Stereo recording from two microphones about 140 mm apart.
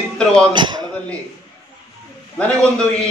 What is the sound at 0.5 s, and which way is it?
Speech, 35° right (ahead or behind).